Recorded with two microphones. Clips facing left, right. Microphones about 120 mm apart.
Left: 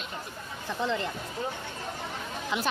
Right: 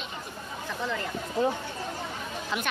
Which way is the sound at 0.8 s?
25° left (ahead or behind).